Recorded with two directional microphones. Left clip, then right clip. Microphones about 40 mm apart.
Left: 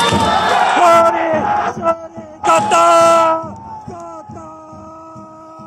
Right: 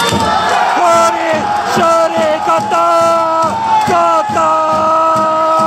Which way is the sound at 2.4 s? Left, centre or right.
Left.